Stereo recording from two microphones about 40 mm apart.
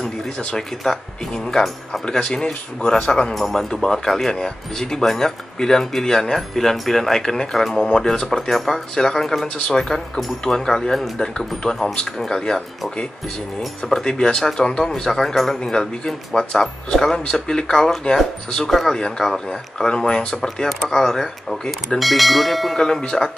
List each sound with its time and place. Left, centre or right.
0.6 s speech: centre
3.3 s speech: centre
3.7 s speech: centre
9.2 s speech: centre
9.7 s speech: centre
14.0 s speech: centre
22.8 s speech: centre